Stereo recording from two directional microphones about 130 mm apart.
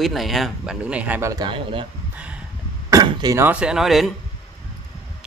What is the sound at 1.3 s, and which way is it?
Speech, 35° right (ahead or behind).